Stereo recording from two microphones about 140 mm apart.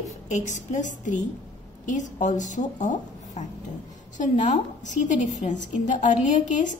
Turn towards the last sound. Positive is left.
turn(degrees=65)  # may be behind; listen again after turning